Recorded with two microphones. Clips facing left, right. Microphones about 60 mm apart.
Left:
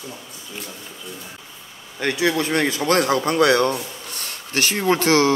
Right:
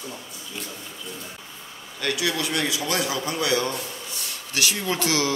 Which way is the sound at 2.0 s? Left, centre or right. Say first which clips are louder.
Left 5 dB; left.